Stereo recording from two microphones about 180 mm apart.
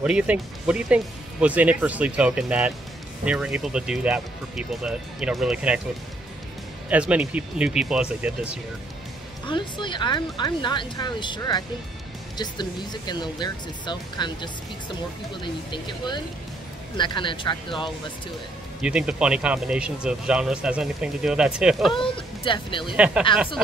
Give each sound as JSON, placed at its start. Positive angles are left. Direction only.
{"t": 0.0, "sound": "speech", "side_deg": -5}
{"t": 6.9, "sound": "speech", "side_deg": -5}
{"t": 9.5, "sound": "speech", "side_deg": 25}
{"t": 18.8, "sound": "speech", "side_deg": -5}
{"t": 21.9, "sound": "speech", "side_deg": 30}
{"t": 22.9, "sound": "speech", "side_deg": -5}